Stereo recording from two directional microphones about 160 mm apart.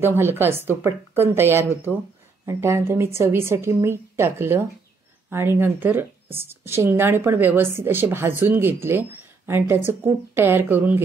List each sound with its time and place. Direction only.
0.0 s speech: 15° right (ahead or behind)